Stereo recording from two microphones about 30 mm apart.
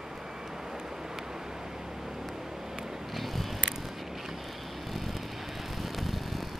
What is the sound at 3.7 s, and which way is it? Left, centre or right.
Vehicle, centre.